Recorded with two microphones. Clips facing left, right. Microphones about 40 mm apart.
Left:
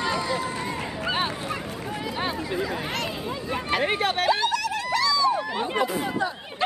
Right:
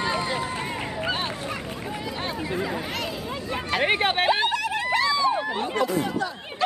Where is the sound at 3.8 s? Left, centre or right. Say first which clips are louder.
Right 4 dB; right.